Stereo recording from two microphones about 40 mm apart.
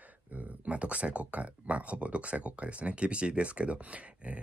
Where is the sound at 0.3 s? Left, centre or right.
Right.